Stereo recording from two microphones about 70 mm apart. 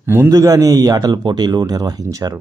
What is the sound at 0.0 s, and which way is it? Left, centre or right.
Speech, right.